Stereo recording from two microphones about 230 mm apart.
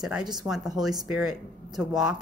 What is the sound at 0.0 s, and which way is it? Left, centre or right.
A woman's voice, centre.